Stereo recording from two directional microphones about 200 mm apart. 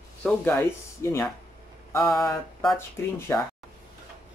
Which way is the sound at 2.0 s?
Centre (ahead or behind).